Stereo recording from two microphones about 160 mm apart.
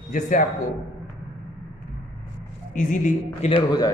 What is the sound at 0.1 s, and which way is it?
Speech, 50° left (ahead or behind).